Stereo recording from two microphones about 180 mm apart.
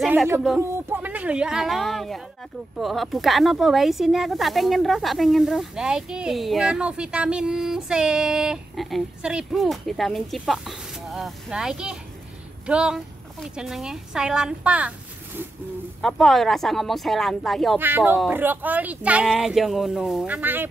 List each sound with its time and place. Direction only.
0.0 s a sound: centre (ahead or behind)
0.6 s speech: 15° right (ahead or behind)
16.0 s speech: centre (ahead or behind)
17.7 s speech: 10° right (ahead or behind)